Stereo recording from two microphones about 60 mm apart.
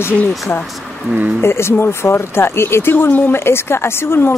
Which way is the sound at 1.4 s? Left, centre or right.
Left.